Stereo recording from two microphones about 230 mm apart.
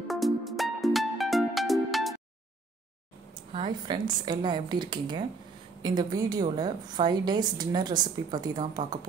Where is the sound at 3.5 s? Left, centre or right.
Centre.